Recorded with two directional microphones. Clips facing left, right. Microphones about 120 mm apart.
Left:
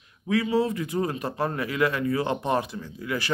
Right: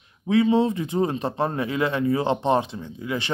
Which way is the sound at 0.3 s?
25° right (ahead or behind).